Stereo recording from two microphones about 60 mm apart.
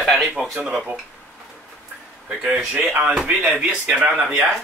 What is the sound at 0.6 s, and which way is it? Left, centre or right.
Speech, centre.